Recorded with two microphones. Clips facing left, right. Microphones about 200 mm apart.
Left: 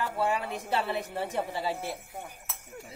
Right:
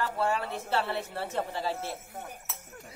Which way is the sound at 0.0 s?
15° left (ahead or behind).